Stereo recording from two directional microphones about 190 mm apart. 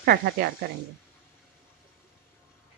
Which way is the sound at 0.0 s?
55° right (ahead or behind).